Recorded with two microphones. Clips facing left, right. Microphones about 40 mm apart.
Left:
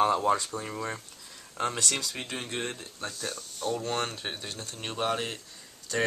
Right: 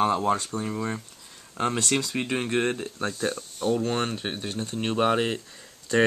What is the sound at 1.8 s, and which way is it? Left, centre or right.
Speech, right.